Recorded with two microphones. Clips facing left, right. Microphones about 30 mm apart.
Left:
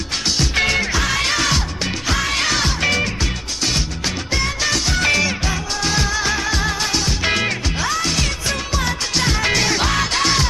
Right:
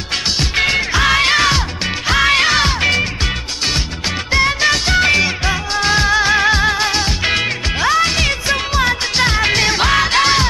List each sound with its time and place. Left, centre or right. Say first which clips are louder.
0.7 s music: right 4 dB; right
4.3 s music: right 8 dB; right